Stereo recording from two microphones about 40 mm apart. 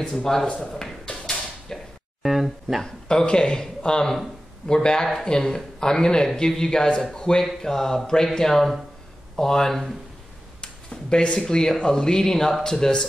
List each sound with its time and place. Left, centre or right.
0.1 s a man's voice: centre
1.7 s music: centre
2.2 s a sound: centre
2.8 s a man's voice: centre
10.6 s a sound: centre
11.3 s a man's voice: centre